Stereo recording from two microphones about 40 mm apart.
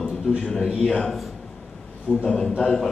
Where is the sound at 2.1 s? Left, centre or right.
Left.